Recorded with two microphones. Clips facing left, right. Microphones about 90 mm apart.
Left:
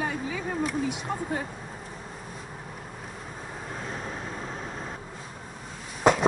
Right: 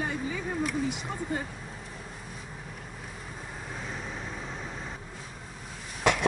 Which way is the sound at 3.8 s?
Centre (ahead or behind).